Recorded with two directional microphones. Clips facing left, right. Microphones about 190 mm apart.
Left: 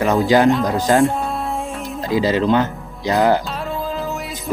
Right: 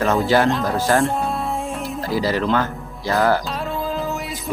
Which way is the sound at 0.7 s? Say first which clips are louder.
Left 3 dB; 15° left (ahead or behind).